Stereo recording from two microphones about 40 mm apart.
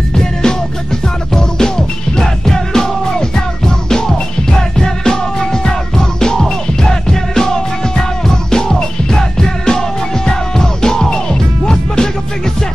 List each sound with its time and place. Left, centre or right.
0.1 s music: centre